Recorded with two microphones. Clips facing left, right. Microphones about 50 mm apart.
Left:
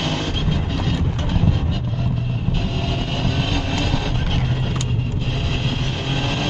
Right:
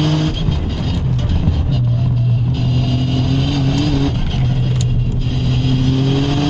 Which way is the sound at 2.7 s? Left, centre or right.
Centre.